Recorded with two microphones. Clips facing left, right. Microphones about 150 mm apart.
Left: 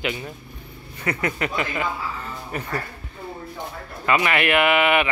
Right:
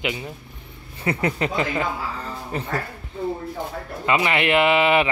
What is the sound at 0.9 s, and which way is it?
Speech, 30° right (ahead or behind).